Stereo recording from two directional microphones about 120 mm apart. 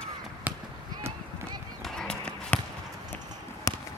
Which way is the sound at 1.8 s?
5° left (ahead or behind).